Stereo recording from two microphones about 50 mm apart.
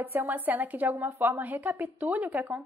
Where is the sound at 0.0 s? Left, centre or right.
Right.